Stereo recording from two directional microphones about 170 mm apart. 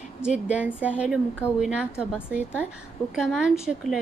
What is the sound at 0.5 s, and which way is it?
A woman's voice, 10° right (ahead or behind).